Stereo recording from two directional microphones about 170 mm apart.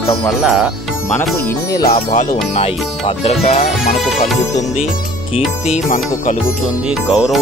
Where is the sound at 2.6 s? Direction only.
35° left (ahead or behind).